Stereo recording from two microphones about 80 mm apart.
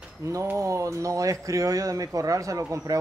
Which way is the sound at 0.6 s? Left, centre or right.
Right.